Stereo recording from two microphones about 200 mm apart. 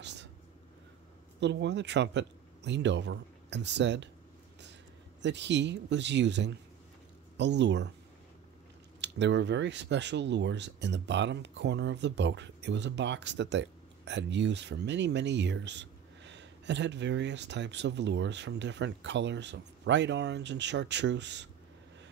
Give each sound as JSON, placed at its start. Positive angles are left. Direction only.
{"t": 0.0, "sound": "vehicle", "side_deg": -60}
{"t": 1.4, "sound": "speech", "side_deg": -60}
{"t": 5.2, "sound": "speech", "side_deg": -60}
{"t": 9.0, "sound": "speech", "side_deg": -60}